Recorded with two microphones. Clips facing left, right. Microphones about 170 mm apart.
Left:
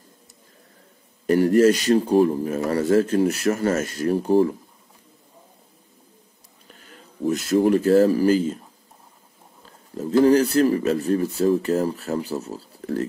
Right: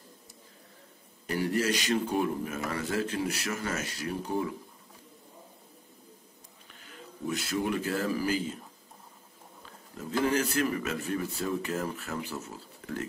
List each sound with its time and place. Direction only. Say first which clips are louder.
1.2 s speech: left 13 dB; 45° left (ahead or behind)
4.3 s speech: left 14 dB; 35° left (ahead or behind)
6.7 s speech: left 1 dB; 40° left (ahead or behind)
9.9 s speech: left 12 dB; 35° left (ahead or behind)